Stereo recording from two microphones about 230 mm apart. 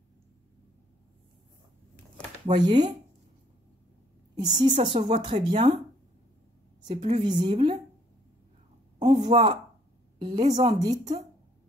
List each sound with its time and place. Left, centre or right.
2.4 s speech: centre
4.4 s speech: centre
6.9 s speech: right
7.2 s speech: centre
9.1 s a woman's voice: right